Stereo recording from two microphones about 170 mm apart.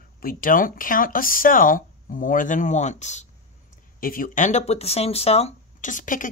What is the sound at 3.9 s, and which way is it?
Speech, 55° left (ahead or behind).